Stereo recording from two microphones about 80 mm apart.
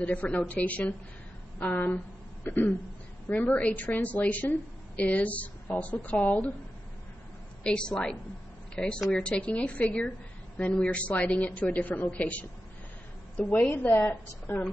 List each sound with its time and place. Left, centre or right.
0.0 s a woman's voice: centre
7.6 s a woman's voice: centre